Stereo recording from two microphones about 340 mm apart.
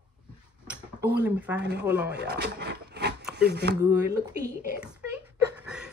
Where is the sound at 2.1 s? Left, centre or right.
Right.